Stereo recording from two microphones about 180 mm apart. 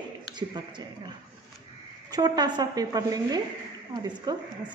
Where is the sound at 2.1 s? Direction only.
20° right (ahead or behind).